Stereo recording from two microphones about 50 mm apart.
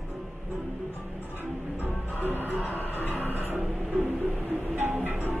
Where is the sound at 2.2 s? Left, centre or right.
Right.